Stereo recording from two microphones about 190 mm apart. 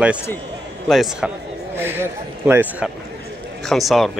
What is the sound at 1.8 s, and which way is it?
A man's voice, 10° right (ahead or behind).